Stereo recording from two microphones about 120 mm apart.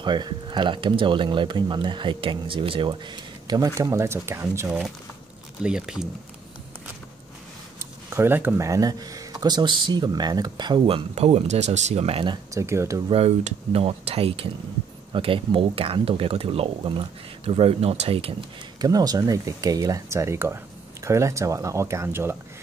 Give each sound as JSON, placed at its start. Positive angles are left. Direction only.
{"t": 0.0, "sound": "speech", "side_deg": -40}
{"t": 3.4, "sound": "speech", "side_deg": -30}
{"t": 5.6, "sound": "speech", "side_deg": -5}
{"t": 7.8, "sound": "speech", "side_deg": -20}
{"t": 11.1, "sound": "speech", "side_deg": -60}
{"t": 12.5, "sound": "speech", "side_deg": -25}
{"t": 13.1, "sound": "speech", "side_deg": -65}
{"t": 18.8, "sound": "speech", "side_deg": -30}